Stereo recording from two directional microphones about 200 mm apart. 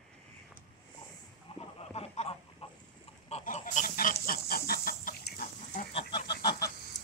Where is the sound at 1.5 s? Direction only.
30° left (ahead or behind).